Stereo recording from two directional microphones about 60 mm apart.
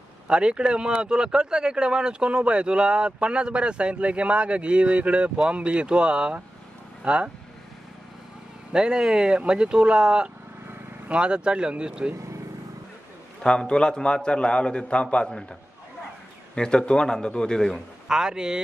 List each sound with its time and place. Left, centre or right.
0.3 s speech: centre
8.7 s speech: centre
13.4 s a man's voice: centre
16.5 s a man's voice: centre
18.0 s speech: centre